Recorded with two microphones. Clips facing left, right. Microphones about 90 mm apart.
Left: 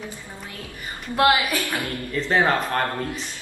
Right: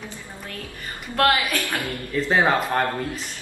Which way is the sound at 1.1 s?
15° left (ahead or behind).